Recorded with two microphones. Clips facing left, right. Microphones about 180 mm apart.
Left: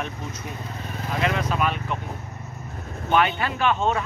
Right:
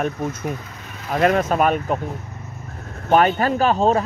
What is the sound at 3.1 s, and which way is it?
Speech, 40° right (ahead or behind).